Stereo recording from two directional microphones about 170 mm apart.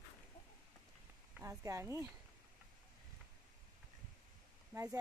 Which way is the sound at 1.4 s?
15° right (ahead or behind).